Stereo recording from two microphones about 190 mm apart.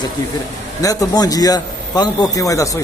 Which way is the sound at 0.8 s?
20° left (ahead or behind).